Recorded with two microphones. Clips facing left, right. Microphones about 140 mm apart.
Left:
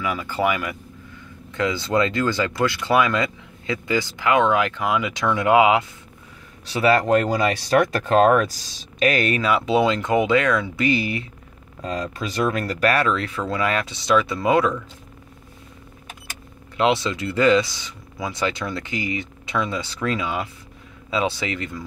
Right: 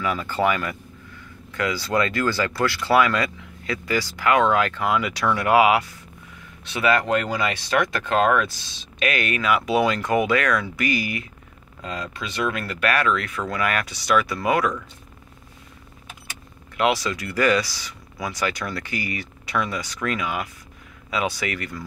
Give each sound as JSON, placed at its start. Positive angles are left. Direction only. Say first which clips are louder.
{"t": 0.0, "sound": "speech", "louder": "even", "side_deg": 10}
{"t": 6.6, "sound": "speech", "louder": "left 3 dB", "side_deg": 35}
{"t": 11.8, "sound": "speech", "louder": "left 4 dB", "side_deg": 40}
{"t": 16.7, "sound": "speech", "louder": "left 2 dB", "side_deg": 25}